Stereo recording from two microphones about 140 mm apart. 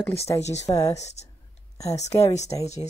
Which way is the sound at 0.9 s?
50° left (ahead or behind).